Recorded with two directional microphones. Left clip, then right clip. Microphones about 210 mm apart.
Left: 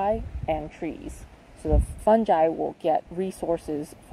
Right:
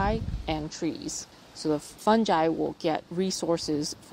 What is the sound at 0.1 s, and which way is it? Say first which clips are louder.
A woman's voice: left 5 dB; 35° right (ahead or behind).